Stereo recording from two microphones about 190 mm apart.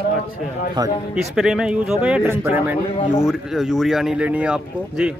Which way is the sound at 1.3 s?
5° right (ahead or behind).